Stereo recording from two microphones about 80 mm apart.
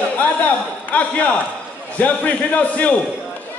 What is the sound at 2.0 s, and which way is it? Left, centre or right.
Speech, centre.